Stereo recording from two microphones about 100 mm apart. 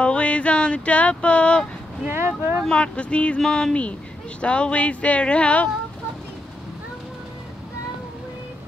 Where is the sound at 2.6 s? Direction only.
10° left (ahead or behind).